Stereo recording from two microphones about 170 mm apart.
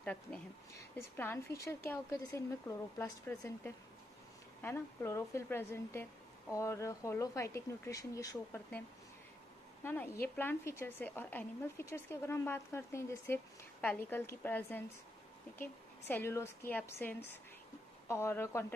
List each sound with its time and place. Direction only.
0.0 s a woman's voice: 5° left (ahead or behind)
9.8 s a woman's voice: 15° left (ahead or behind)